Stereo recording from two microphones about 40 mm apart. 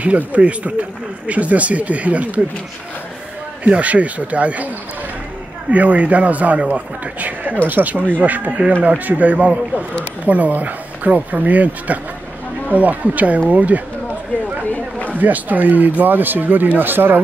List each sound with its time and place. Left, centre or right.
0.3 s speech: right
3.6 s speech: right
5.7 s speech: right
14.6 s run: left
15.1 s speech: right